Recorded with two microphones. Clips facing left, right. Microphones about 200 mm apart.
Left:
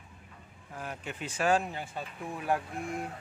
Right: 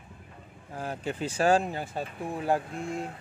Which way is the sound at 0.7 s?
30° right (ahead or behind).